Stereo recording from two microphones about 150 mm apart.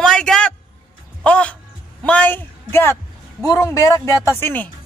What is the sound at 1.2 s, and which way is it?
Music, 5° left (ahead or behind).